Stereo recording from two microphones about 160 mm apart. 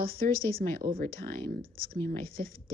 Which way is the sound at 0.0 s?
65° right (ahead or behind).